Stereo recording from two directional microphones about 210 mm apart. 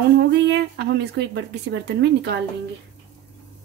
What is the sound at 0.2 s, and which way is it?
Speech, 55° right (ahead or behind).